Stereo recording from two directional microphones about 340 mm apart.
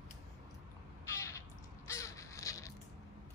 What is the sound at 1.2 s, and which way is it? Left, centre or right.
Crow, centre.